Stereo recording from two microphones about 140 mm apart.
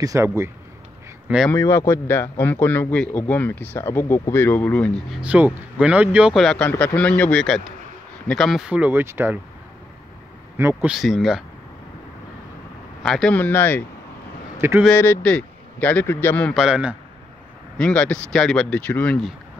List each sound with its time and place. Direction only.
0.0 s speech: 20° right (ahead or behind)
1.5 s a man's voice: 20° left (ahead or behind)
5.1 s speech: 10° right (ahead or behind)
6.4 s a man's voice: 5° left (ahead or behind); by 9.4 s 15° right (ahead or behind)
10.6 s speech: 15° right (ahead or behind)
10.9 s speech: centre (ahead or behind)
13.0 s a man's voice: 5° left (ahead or behind)
14.9 s a man's voice: 10° left (ahead or behind)
16.5 s speech: 5° right (ahead or behind)
17.7 s a man's voice: 5° left (ahead or behind)